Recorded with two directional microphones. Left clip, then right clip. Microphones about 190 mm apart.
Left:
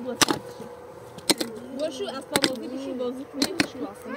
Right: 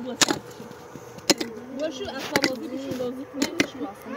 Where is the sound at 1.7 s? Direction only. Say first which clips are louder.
Even; 10° left (ahead or behind).